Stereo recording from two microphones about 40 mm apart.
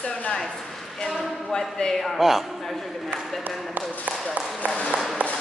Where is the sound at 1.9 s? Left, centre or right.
Centre.